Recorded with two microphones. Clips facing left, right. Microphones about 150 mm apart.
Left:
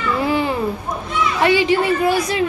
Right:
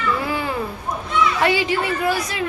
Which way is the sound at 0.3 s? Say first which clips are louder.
Left 5 dB; 20° left (ahead or behind).